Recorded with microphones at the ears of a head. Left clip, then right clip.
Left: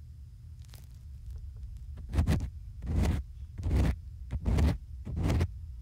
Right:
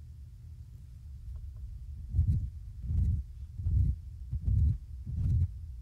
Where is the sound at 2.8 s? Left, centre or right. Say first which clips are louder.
Left 9 dB; left.